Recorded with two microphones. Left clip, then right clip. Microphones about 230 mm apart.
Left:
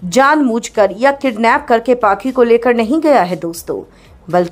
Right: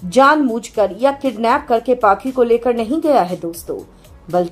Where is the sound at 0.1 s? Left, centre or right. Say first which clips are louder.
Left 1 dB; left.